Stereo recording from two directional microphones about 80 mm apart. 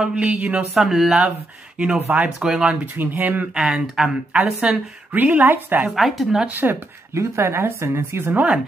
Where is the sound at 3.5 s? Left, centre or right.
Centre; by 5.9 s right.